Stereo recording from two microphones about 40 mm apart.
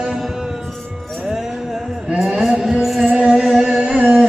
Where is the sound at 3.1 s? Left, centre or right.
Centre.